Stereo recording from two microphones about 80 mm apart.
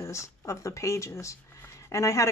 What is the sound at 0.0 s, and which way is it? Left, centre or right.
Speech, left.